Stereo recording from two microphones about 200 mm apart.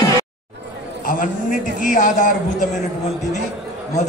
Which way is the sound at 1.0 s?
45° left (ahead or behind).